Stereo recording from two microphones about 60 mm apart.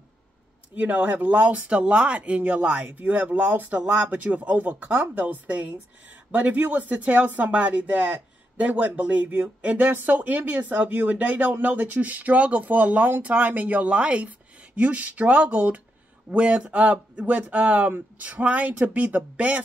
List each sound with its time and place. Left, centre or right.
0.7 s speech: right
7.5 s speech: right
9.8 s speech: right